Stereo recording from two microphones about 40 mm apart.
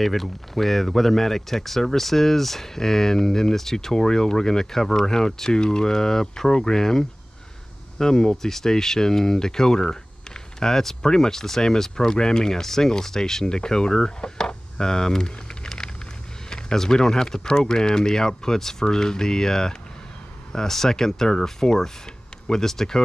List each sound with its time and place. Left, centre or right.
0.0 s speech: centre